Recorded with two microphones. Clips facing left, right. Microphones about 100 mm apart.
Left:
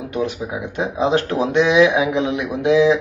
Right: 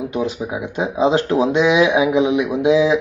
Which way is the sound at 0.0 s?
20° right (ahead or behind).